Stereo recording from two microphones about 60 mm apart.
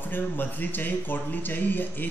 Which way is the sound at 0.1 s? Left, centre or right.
Left.